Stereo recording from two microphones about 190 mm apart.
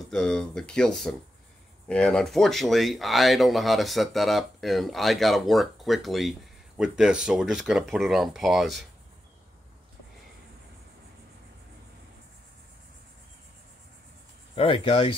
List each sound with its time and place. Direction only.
0.1 s speech: 5° left (ahead or behind)
14.5 s speech: 30° left (ahead or behind)